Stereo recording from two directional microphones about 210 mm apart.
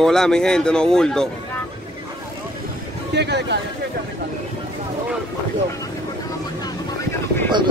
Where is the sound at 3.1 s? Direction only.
55° right (ahead or behind).